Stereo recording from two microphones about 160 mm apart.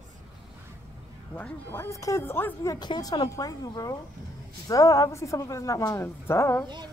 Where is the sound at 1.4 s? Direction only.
10° left (ahead or behind).